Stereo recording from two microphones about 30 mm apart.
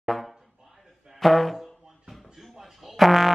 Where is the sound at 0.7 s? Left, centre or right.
Centre.